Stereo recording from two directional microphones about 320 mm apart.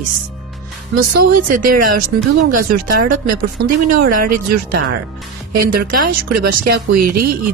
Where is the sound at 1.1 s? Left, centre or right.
Right.